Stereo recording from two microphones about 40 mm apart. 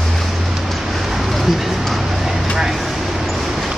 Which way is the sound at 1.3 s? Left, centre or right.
Centre.